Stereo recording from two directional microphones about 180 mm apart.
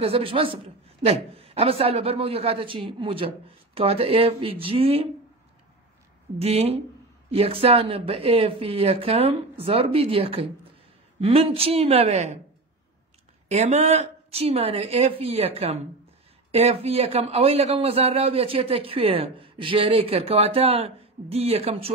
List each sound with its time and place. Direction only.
0.0 s a man's voice: 30° right (ahead or behind)
6.3 s a man's voice: 35° right (ahead or behind)
13.5 s a man's voice: 40° right (ahead or behind)